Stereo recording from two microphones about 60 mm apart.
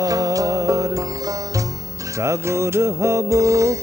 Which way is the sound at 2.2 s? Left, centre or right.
Right.